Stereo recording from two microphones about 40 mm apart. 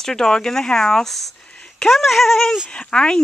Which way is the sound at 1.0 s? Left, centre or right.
Centre.